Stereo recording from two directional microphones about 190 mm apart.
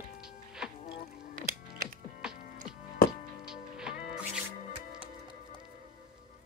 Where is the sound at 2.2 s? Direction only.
5° right (ahead or behind).